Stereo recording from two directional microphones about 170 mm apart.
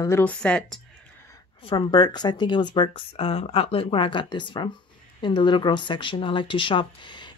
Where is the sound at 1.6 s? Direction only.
25° left (ahead or behind).